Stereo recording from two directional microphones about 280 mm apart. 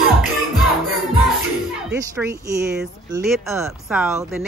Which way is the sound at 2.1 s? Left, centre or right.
Centre.